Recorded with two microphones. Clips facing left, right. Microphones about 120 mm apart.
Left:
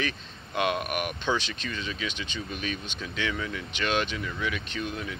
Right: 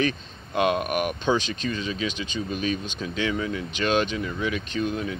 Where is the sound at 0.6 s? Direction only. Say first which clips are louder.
Right 5 dB; 25° right (ahead or behind).